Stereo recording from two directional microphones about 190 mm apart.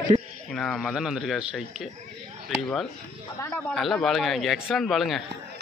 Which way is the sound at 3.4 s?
10° left (ahead or behind).